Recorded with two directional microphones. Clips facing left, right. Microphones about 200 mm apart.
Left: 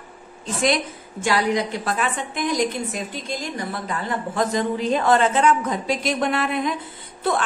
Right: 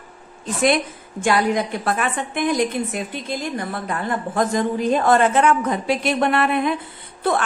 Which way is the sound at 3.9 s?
50° right (ahead or behind).